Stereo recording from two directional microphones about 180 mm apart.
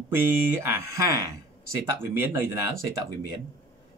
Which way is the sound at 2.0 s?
10° right (ahead or behind).